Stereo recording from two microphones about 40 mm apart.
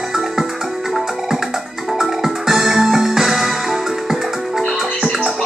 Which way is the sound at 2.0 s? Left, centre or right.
Centre.